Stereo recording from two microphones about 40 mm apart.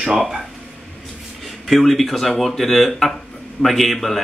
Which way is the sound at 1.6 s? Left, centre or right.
Centre.